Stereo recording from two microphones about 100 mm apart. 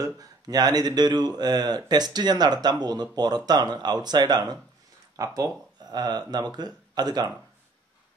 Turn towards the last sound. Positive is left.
turn(degrees=-40)  # may be behind; listen again after turning